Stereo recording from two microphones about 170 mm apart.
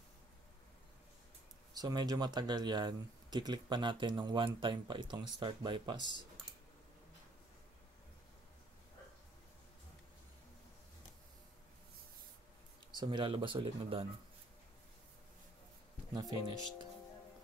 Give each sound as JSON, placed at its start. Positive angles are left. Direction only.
{"t": 1.8, "sound": "speech", "side_deg": -20}
{"t": 13.0, "sound": "speech", "side_deg": -30}
{"t": 16.2, "sound": "speech", "side_deg": -25}